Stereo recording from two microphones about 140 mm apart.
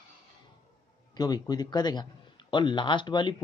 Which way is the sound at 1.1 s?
30° left (ahead or behind).